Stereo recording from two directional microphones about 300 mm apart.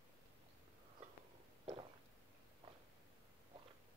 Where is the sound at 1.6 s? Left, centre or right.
Centre.